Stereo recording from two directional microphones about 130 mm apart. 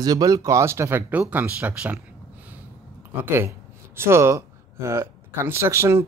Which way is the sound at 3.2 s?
20° right (ahead or behind).